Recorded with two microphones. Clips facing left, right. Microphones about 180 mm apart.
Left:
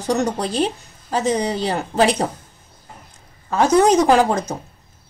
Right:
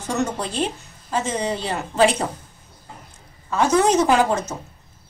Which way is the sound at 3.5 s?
35° left (ahead or behind).